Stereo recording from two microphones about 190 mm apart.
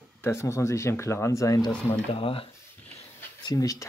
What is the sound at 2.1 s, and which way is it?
Speech, 30° left (ahead or behind).